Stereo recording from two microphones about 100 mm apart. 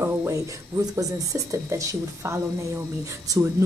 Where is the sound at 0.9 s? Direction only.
30° right (ahead or behind).